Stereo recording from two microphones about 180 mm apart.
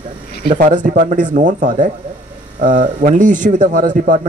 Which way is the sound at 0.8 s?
50° right (ahead or behind).